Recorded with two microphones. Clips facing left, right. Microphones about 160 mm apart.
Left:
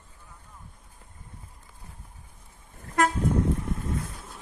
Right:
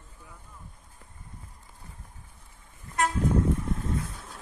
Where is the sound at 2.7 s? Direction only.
55° left (ahead or behind).